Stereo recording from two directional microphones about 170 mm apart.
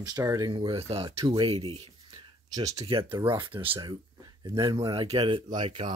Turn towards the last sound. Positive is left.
turn(degrees=-30)  # may be behind; listen again after turning